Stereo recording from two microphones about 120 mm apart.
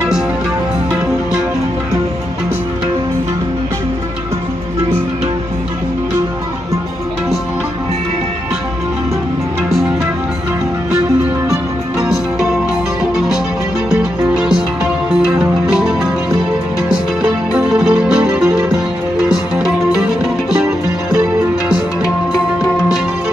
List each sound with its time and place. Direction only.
11.4 s music: 30° right (ahead or behind)
13.8 s music: 5° right (ahead or behind)
15.6 s music: 5° right (ahead or behind)